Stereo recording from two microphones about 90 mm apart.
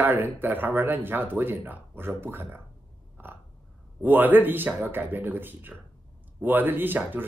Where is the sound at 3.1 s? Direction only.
25° right (ahead or behind).